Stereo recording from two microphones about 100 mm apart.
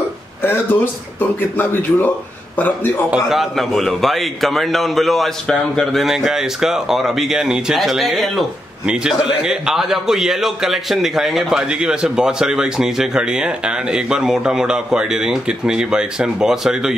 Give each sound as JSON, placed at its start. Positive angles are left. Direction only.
{"t": 0.4, "sound": "a man's voice", "side_deg": 20}
{"t": 3.3, "sound": "a man's voice", "side_deg": 0}